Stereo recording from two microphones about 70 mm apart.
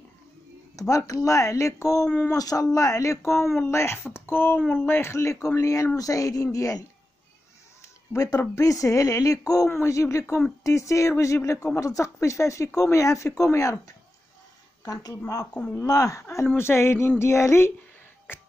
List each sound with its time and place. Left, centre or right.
0.7 s speech: left
2.3 s speech: left
8.5 s speech: left
9.7 s speech: left
16.2 s speech: left
18.3 s music: left